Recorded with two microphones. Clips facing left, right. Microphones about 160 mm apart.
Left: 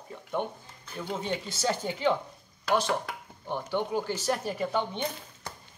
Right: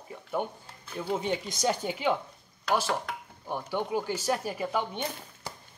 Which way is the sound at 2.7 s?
Centre (ahead or behind).